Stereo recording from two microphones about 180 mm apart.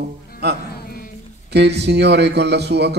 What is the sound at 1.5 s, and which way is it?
Speech, 70° right (ahead or behind).